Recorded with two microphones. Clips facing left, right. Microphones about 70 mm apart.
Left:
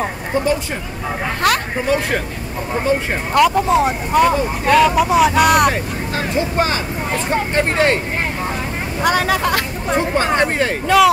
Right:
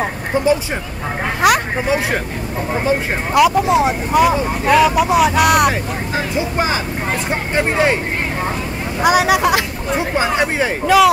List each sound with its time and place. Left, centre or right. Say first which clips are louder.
1.4 s speech: right 4 dB; centre
3.3 s speech: right 1 dB; centre
9.0 s speech: right 3 dB; centre